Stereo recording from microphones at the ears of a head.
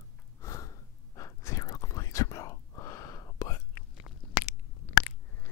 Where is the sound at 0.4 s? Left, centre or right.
Left.